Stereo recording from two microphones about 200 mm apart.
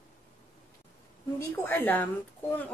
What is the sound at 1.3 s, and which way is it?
Speech, 10° left (ahead or behind).